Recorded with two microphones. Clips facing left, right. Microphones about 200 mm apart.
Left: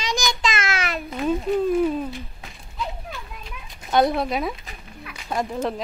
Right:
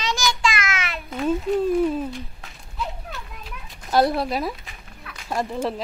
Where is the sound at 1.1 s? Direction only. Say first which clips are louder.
Right 1 dB; centre (ahead or behind).